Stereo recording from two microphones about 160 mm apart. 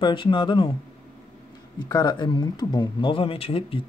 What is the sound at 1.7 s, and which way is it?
Speech, 25° left (ahead or behind).